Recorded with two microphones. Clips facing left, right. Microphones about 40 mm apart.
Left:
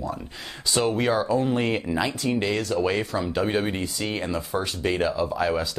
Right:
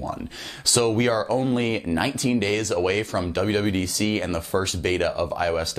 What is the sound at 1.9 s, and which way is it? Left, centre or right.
Speech, left.